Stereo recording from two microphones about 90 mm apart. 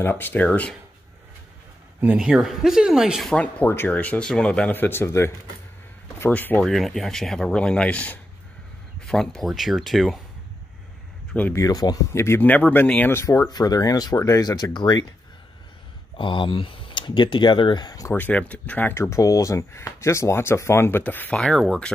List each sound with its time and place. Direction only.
0.0 s speech: 20° left (ahead or behind)
2.1 s speech: 10° right (ahead or behind)
3.3 s speech: 15° left (ahead or behind)
4.7 s speech: 25° left (ahead or behind)
6.6 s speech: 5° left (ahead or behind)
11.5 s speech: 45° left (ahead or behind)
12.1 s speech: 30° left (ahead or behind)
13.2 s speech: 35° left (ahead or behind)
13.5 s speech: 50° left (ahead or behind)
16.2 s speech: 70° left (ahead or behind); by 18.0 s 50° left (ahead or behind)
18.1 s speech: 20° left (ahead or behind)
21.4 s speech: 5° left (ahead or behind)